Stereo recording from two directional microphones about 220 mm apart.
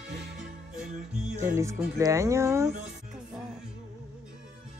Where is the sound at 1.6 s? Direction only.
15° right (ahead or behind).